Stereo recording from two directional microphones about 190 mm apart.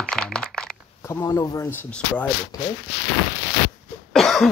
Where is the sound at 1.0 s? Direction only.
15° left (ahead or behind).